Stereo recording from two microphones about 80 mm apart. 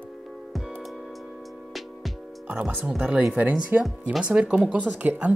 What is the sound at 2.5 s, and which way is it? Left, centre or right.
Speech, centre.